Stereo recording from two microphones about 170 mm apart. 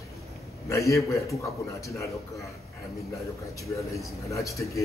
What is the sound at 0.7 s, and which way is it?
A man's voice, 20° left (ahead or behind).